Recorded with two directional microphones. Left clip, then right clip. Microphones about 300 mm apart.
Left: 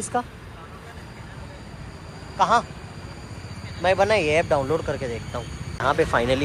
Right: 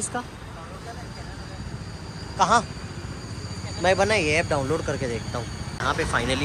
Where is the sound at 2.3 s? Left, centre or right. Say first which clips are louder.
Left 1 dB; centre.